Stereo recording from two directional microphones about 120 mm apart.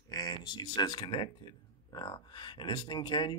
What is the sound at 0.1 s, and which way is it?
Speech, 35° left (ahead or behind).